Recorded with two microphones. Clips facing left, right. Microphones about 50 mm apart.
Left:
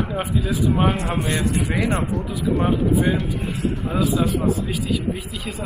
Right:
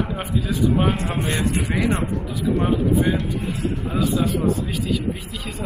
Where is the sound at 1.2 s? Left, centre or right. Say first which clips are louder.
Right 1 dB; right.